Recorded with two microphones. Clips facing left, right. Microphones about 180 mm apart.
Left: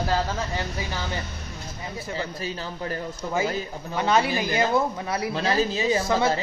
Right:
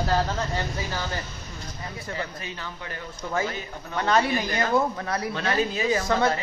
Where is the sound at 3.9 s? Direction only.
5° left (ahead or behind).